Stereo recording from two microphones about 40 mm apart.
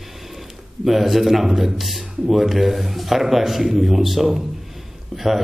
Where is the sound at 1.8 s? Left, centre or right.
Centre.